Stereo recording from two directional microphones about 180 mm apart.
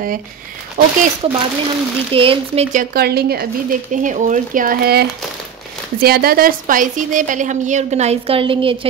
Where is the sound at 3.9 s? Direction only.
45° right (ahead or behind); by 8.9 s 30° right (ahead or behind).